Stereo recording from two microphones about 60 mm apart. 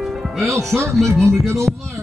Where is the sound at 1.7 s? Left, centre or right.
Centre.